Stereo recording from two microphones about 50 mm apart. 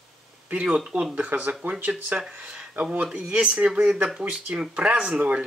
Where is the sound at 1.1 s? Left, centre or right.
Right.